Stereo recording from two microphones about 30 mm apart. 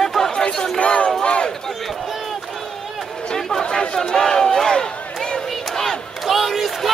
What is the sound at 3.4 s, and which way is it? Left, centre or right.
Chatter, centre.